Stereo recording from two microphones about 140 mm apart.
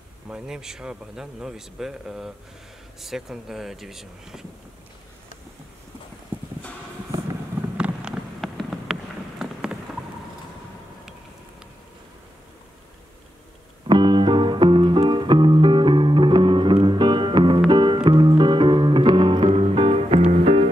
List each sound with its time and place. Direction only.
0.3 s speech: 5° right (ahead or behind)
7.7 s a sound: 10° right (ahead or behind)
13.8 s music: 35° right (ahead or behind)